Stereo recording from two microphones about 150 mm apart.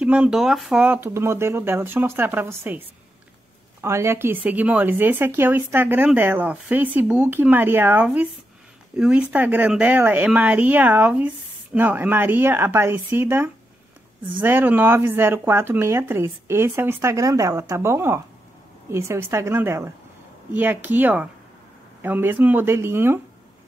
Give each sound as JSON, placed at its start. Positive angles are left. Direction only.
{"t": 0.0, "sound": "speech", "side_deg": -5}
{"t": 3.8, "sound": "speech", "side_deg": -20}